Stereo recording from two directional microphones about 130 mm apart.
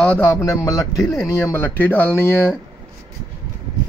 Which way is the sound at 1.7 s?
10° left (ahead or behind).